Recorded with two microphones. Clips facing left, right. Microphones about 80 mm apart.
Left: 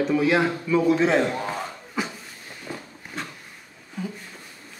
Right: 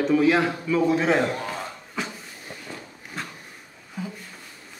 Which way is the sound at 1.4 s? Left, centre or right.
Centre.